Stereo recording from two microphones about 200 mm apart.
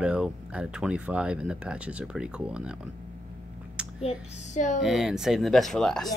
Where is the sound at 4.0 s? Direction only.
35° left (ahead or behind).